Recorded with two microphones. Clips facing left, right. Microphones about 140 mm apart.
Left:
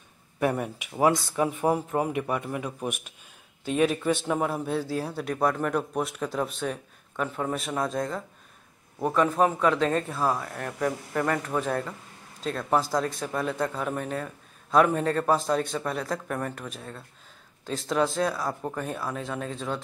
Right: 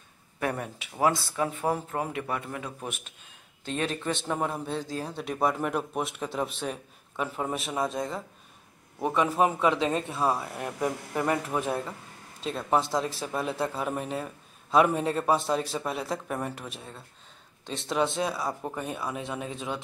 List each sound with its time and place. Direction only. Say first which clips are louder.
0.4 s speech: left 5 dB; 15° left (ahead or behind)
10.5 s speech: left 1 dB; 15° right (ahead or behind)